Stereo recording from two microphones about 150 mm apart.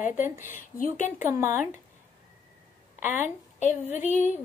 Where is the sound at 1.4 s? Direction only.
60° left (ahead or behind).